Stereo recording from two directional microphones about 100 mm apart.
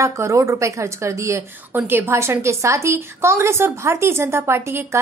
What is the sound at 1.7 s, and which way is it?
A woman's voice, 20° right (ahead or behind).